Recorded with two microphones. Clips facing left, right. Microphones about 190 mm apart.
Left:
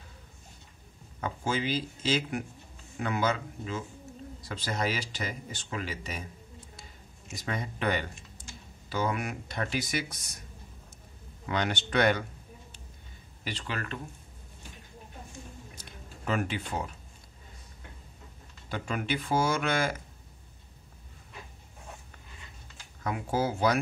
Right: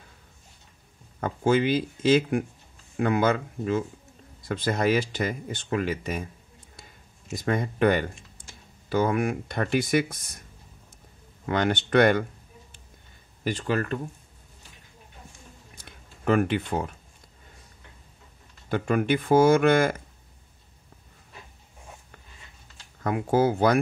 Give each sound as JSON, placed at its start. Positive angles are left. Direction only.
{"t": 1.2, "sound": "speech", "side_deg": -55}
{"t": 7.3, "sound": "speech", "side_deg": -50}
{"t": 11.4, "sound": "speech", "side_deg": -50}
{"t": 13.4, "sound": "speech", "side_deg": -45}
{"t": 15.8, "sound": "a sound", "side_deg": -55}
{"t": 18.7, "sound": "speech", "side_deg": -55}
{"t": 23.0, "sound": "speech", "side_deg": -55}